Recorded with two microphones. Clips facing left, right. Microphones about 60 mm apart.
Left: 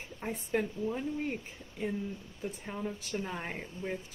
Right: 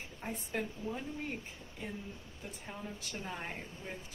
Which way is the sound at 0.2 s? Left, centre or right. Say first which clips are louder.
Left 6 dB; left.